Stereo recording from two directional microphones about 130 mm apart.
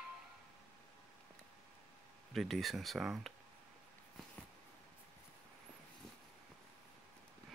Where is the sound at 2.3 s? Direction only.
Centre (ahead or behind).